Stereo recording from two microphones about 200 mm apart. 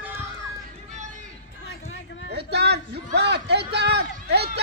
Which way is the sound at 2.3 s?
55° right (ahead or behind).